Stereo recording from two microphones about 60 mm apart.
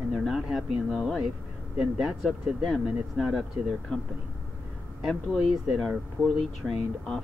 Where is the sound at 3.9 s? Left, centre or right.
Centre.